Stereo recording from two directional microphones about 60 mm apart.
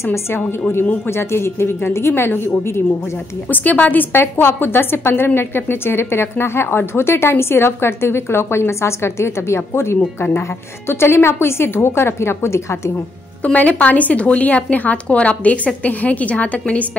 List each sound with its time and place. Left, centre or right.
0.0 s a woman's voice: left
3.4 s a woman's voice: left
13.4 s speech: left